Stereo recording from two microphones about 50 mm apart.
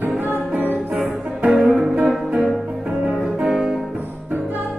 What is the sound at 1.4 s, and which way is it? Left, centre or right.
Music, right.